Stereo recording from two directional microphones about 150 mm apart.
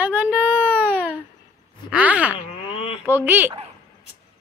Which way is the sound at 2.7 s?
40° left (ahead or behind).